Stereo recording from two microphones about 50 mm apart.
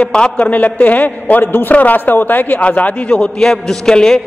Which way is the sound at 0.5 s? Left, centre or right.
Left.